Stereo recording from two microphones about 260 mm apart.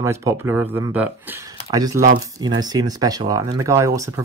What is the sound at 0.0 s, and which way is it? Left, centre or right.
Speech, centre.